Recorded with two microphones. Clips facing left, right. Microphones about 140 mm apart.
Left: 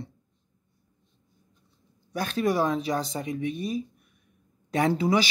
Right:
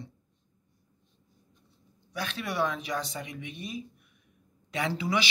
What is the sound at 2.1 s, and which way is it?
Speech, 45° left (ahead or behind).